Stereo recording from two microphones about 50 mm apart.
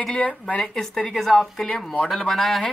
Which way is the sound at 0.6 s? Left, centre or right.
Centre.